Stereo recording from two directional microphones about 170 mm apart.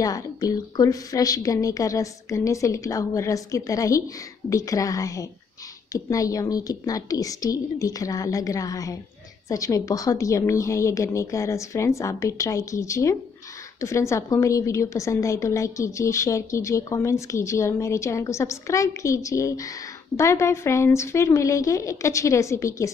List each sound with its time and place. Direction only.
0.0 s a woman's voice: 20° left (ahead or behind)